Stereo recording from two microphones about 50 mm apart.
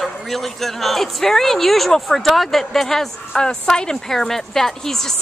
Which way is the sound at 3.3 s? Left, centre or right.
Centre.